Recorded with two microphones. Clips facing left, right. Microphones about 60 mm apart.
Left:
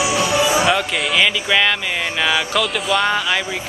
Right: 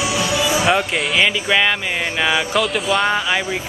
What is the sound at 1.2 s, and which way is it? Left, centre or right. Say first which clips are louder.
Speech: even; centre.